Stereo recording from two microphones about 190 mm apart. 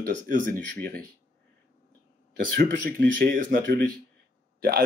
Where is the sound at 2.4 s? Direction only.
50° right (ahead or behind).